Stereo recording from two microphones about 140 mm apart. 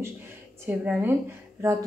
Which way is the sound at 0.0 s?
15° right (ahead or behind).